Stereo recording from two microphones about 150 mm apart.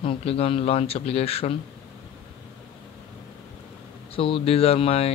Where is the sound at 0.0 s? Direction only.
40° left (ahead or behind).